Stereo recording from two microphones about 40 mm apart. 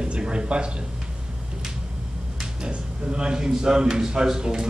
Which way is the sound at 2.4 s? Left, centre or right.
Right.